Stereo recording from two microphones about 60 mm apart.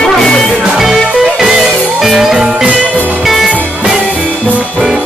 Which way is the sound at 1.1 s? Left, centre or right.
Centre.